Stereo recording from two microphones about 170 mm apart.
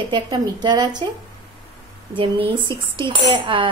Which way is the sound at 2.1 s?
30° right (ahead or behind).